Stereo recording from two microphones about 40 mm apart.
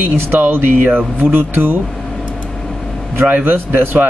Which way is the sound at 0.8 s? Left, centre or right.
Right.